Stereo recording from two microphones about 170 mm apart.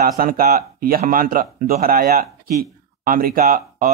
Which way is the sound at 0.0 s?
60° right (ahead or behind).